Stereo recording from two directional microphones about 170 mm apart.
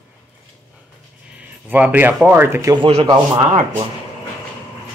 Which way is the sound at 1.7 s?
10° right (ahead or behind).